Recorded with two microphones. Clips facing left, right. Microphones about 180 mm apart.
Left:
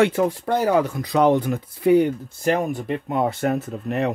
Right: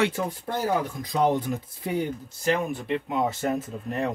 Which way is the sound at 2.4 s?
45° left (ahead or behind).